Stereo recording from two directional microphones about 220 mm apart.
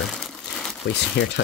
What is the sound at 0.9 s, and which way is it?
Speech, 50° left (ahead or behind).